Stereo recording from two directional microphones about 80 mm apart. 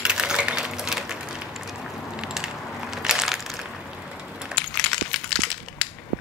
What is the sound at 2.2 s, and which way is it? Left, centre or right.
Crushing, centre.